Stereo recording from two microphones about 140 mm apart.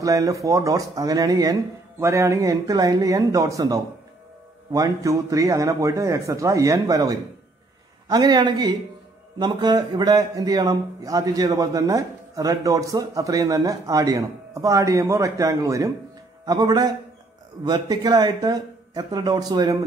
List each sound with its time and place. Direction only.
0.0 s a man's voice: 25° right (ahead or behind)